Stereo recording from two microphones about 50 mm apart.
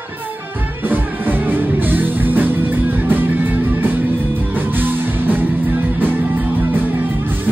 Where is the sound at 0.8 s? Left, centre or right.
Right.